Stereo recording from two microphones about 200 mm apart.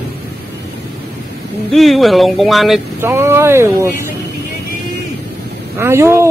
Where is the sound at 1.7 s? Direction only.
Centre (ahead or behind).